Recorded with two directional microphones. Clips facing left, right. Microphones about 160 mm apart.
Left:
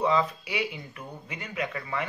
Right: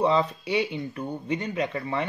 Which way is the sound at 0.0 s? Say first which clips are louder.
Right 3 dB; 30° right (ahead or behind).